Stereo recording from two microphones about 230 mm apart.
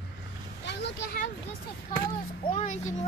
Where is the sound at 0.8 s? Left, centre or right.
Left.